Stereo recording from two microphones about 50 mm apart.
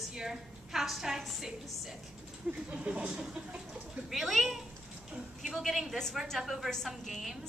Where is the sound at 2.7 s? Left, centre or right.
Right.